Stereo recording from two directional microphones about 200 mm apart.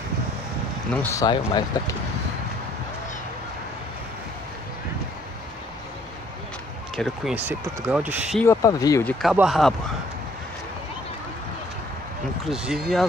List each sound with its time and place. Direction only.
0.9 s speech: 10° left (ahead or behind)
7.0 s speech: 5° right (ahead or behind)
8.4 s speech: 15° left (ahead or behind)
9.0 s speech: centre (ahead or behind)
12.4 s speech: 5° right (ahead or behind)